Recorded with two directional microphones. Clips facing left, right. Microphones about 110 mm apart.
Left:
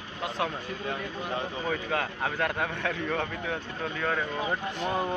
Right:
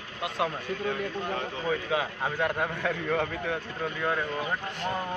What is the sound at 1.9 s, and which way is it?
A man's voice, 5° right (ahead or behind).